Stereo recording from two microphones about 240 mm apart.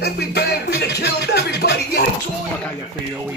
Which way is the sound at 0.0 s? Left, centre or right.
Left.